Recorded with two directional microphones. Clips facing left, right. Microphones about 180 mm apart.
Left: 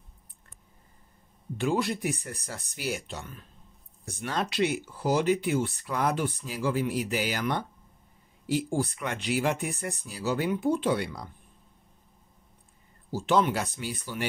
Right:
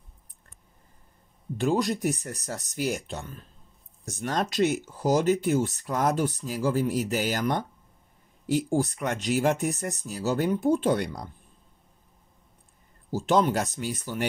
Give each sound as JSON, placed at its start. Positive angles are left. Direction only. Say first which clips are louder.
{"t": 1.6, "sound": "speech", "louder": "right 3 dB", "side_deg": -40}
{"t": 13.1, "sound": "speech", "louder": "right 2 dB", "side_deg": -40}